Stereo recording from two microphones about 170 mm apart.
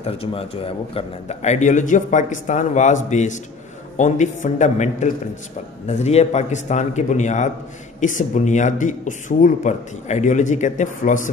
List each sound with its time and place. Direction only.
0.0 s a man's voice: 35° left (ahead or behind)